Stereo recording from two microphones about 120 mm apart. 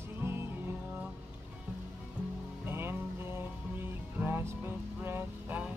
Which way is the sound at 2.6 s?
20° right (ahead or behind).